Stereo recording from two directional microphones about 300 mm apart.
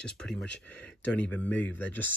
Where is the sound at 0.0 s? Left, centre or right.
Centre.